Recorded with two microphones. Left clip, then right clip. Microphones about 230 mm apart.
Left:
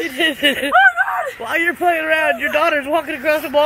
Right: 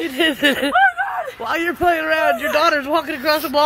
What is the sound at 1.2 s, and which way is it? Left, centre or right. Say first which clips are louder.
Speech: left 3 dB; centre.